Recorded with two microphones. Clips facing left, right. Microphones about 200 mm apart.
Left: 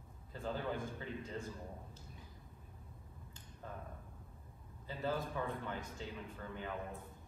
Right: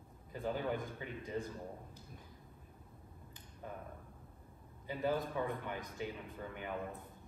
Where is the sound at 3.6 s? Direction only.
15° right (ahead or behind).